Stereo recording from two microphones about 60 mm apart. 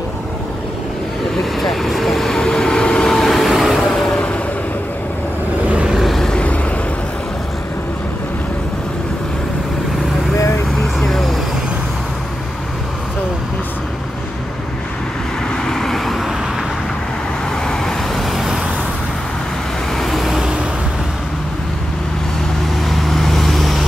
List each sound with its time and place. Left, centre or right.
1.4 s vehicle: centre
3.8 s vehicle: centre
5.7 s vehicle: centre
5.9 s vehicle: centre
6.3 s vehicle: left
10.8 s vehicle: centre
15.5 s vehicle: centre
17.6 s vehicle: centre
18.3 s vehicle: centre
19.9 s vehicle: centre
22.8 s vehicle: centre